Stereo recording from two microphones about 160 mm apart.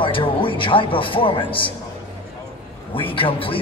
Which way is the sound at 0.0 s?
30° left (ahead or behind).